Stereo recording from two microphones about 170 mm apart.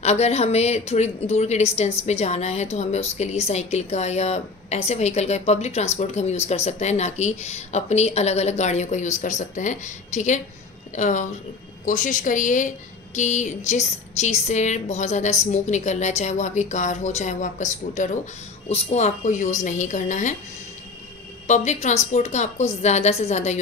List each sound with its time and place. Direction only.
0.0 s a woman's voice: 40° left (ahead or behind)
21.5 s a woman's voice: 45° left (ahead or behind)